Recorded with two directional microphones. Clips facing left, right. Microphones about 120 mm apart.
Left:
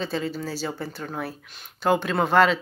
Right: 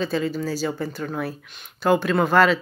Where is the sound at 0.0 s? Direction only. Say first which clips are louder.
Right 4 dB; 30° left (ahead or behind).